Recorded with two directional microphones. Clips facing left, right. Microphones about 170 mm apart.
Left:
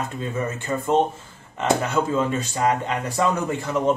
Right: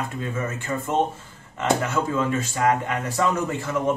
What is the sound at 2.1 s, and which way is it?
Speech, 25° left (ahead or behind).